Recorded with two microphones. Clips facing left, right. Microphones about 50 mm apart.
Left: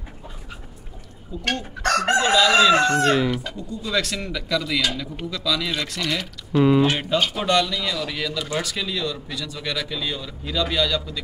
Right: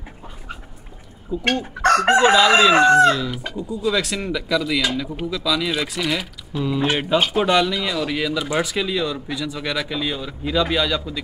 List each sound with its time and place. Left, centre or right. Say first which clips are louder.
1.3 s speech: right 5 dB; centre
3.0 s chicken: right 4 dB; left
3.5 s speech: right 4 dB; centre